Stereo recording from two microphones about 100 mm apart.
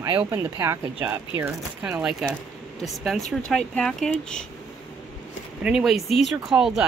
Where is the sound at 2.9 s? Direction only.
Centre (ahead or behind).